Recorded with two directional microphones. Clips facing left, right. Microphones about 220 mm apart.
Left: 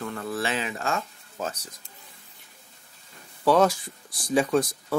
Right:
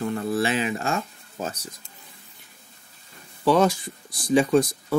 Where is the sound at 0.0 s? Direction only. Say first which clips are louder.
Right 6 dB; 25° right (ahead or behind).